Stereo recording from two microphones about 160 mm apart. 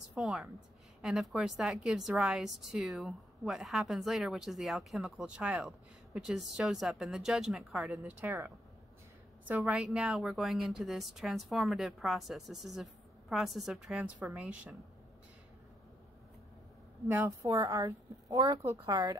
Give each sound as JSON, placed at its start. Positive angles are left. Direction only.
{"t": 0.1, "sound": "a woman's voice", "side_deg": 0}
{"t": 9.5, "sound": "a woman's voice", "side_deg": -5}
{"t": 17.1, "sound": "a woman's voice", "side_deg": -15}